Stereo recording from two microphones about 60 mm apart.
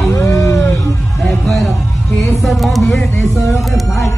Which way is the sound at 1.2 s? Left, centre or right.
Centre.